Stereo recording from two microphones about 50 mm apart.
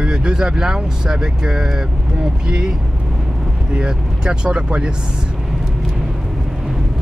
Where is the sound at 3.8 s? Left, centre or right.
Centre.